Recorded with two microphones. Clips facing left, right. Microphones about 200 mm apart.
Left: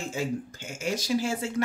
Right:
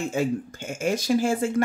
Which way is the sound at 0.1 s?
55° right (ahead or behind).